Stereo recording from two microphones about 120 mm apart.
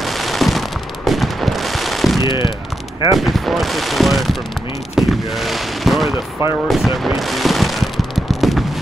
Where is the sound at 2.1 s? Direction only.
40° left (ahead or behind).